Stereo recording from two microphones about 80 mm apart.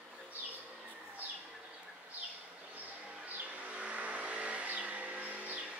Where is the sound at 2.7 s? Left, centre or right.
Centre.